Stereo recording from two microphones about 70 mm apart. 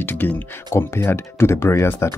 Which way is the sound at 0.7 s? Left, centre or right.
Left.